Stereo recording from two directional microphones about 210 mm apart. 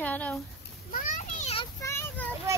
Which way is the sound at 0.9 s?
40° left (ahead or behind).